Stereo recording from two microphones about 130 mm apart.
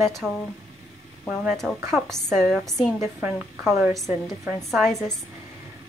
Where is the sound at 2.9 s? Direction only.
20° right (ahead or behind).